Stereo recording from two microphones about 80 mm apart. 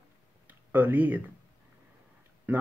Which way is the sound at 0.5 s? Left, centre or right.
Right.